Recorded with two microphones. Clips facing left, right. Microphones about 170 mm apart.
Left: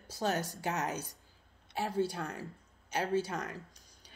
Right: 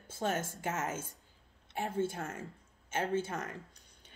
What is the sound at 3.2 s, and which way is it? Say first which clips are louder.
Speech: left 1 dB; 45° right (ahead or behind).